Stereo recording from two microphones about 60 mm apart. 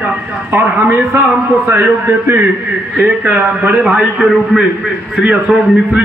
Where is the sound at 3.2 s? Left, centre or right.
Right.